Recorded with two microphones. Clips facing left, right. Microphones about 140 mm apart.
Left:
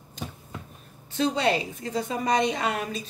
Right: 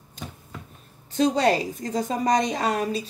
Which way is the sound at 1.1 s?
40° right (ahead or behind).